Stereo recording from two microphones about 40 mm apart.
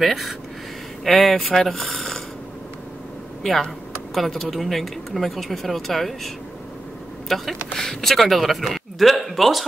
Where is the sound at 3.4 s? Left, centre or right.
Centre.